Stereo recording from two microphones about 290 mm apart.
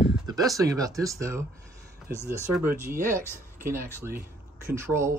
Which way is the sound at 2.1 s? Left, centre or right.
Right.